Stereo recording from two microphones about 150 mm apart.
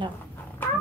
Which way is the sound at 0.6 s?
10° left (ahead or behind).